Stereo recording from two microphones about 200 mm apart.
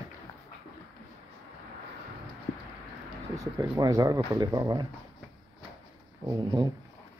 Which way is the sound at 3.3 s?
20° right (ahead or behind).